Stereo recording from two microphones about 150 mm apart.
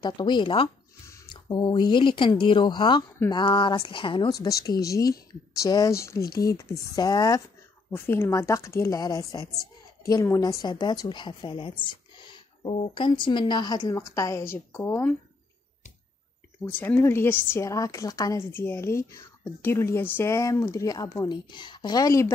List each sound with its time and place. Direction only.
0.0 s a woman's voice: 30° left (ahead or behind); by 15.1 s 15° left (ahead or behind)
16.6 s a woman's voice: 10° left (ahead or behind)
18.5 s a woman's voice: 15° left (ahead or behind)